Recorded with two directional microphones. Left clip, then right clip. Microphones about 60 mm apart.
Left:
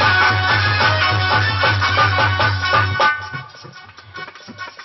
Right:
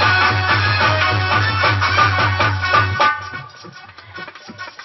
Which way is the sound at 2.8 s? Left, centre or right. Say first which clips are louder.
Even; right.